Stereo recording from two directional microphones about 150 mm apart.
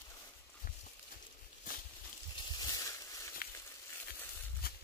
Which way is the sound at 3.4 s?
85° left.